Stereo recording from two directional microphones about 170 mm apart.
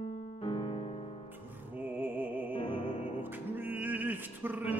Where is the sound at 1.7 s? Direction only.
10° right (ahead or behind).